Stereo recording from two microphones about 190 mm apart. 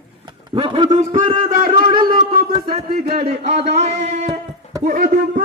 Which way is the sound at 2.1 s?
50° right (ahead or behind).